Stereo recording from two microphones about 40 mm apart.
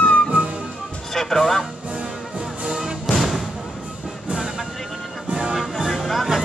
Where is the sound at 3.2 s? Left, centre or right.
Centre.